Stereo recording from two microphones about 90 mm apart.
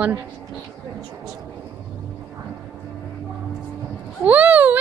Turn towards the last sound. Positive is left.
turn(degrees=-20)  # may be behind; listen again after turning